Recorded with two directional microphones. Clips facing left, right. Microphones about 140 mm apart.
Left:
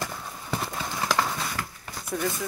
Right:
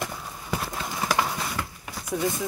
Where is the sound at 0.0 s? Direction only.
Centre (ahead or behind).